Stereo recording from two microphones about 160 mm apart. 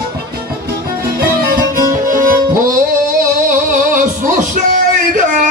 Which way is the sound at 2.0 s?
60° right (ahead or behind).